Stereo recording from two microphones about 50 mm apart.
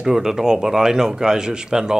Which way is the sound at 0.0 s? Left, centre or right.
Centre.